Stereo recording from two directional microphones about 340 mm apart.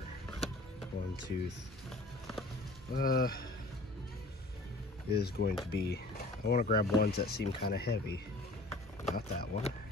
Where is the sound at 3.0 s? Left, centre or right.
Left.